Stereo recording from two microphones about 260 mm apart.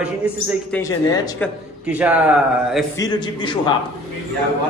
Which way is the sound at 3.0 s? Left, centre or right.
Centre.